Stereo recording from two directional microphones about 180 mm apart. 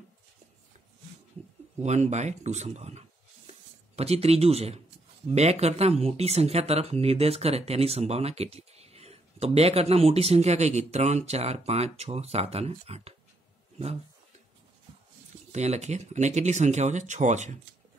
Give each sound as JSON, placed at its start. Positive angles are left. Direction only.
{"t": 1.8, "sound": "speech", "side_deg": -40}
{"t": 15.5, "sound": "speech", "side_deg": -40}